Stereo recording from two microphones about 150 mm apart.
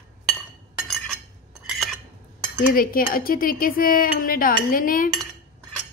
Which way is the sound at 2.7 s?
75° left (ahead or behind).